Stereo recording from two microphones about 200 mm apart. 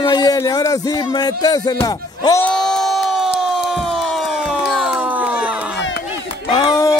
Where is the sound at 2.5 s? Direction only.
5° left (ahead or behind).